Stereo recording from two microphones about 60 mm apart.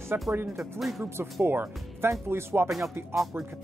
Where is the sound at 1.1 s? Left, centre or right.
Right.